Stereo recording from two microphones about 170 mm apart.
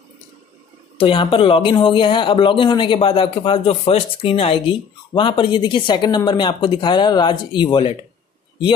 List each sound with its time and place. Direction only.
0.9 s speech: 30° left (ahead or behind)